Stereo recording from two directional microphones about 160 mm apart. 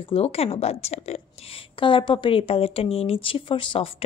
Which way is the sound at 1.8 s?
30° left (ahead or behind).